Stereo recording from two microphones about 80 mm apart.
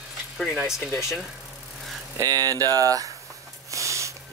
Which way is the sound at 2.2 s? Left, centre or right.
Right.